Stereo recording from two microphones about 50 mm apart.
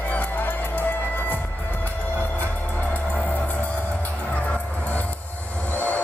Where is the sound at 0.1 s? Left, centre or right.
Left.